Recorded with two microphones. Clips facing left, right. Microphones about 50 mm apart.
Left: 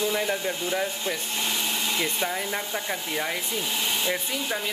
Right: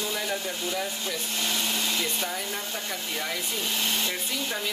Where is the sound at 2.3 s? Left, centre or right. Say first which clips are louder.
Left 4 dB; left.